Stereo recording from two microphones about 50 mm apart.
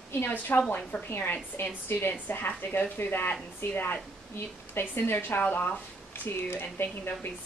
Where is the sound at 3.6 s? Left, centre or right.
Left.